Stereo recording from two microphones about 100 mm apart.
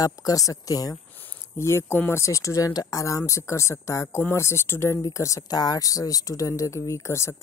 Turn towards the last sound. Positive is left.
turn(degrees=30)  # may be behind; listen again after turning